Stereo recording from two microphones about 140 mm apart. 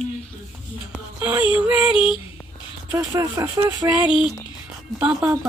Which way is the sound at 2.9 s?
20° right (ahead or behind).